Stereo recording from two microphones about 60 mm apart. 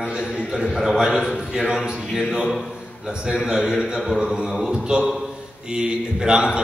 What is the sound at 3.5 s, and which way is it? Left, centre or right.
A man's voice, centre.